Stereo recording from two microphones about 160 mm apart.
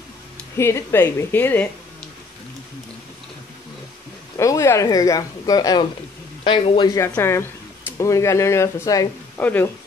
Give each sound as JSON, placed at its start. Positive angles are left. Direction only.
{"t": 0.6, "sound": "a woman's voice", "side_deg": 15}
{"t": 4.4, "sound": "a man's voice", "side_deg": 20}
{"t": 7.1, "sound": "a woman's voice", "side_deg": 15}
{"t": 9.4, "sound": "a woman's voice", "side_deg": 10}